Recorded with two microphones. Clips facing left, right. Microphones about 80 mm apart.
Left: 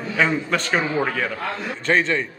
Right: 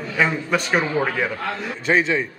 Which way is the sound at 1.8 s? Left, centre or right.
Centre.